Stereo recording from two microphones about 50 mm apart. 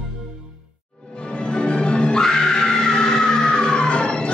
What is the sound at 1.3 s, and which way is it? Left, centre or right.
Music, centre.